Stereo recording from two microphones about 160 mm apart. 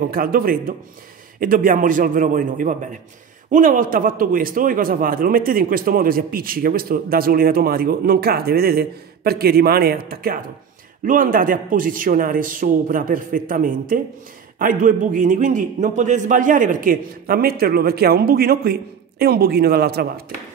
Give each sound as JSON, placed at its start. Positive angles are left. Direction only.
{"t": 0.1, "sound": "a man's voice", "side_deg": -65}